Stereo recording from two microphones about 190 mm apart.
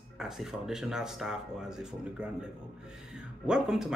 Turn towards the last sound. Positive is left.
turn(degrees=0)  # may be behind; listen again after turning